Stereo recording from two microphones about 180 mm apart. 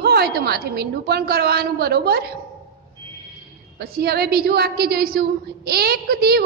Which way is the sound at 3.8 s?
60° right (ahead or behind).